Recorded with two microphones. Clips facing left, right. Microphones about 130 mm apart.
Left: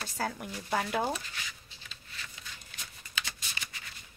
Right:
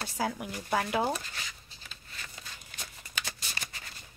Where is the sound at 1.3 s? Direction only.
40° right (ahead or behind).